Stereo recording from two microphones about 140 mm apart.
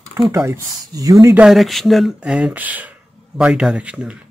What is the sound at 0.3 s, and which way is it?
Speech, 20° right (ahead or behind).